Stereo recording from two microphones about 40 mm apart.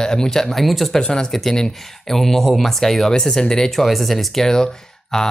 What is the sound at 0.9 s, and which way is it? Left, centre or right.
Speech, centre.